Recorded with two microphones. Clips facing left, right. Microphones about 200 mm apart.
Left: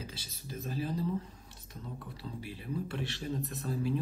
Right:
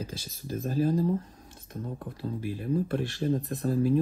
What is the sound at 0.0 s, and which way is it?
Speech, 50° right (ahead or behind).